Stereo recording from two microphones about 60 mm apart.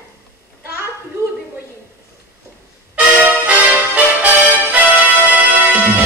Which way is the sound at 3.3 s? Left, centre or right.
Right.